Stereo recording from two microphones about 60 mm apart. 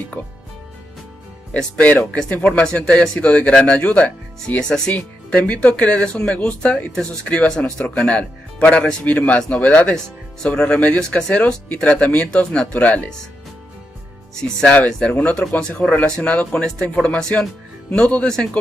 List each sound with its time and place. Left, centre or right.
0.2 s speech: left
1.5 s speech: left
2.3 s speech: left
14.4 s speech: centre